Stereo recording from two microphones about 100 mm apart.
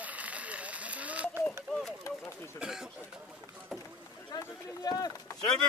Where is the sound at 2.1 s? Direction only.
30° left (ahead or behind).